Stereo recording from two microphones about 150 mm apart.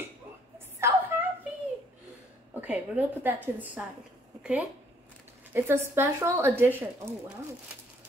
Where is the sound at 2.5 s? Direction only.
10° right (ahead or behind).